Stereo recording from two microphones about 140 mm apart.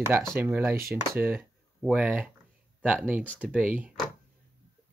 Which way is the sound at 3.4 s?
10° right (ahead or behind).